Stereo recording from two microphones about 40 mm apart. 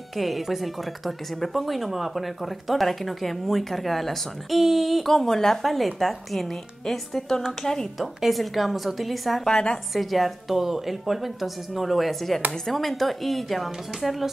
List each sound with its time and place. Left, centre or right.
0.1 s speech: centre
5.1 s speech: centre
5.6 s speech: centre
8.0 s speech: centre
9.5 s a woman's voice: centre
9.9 s speech: centre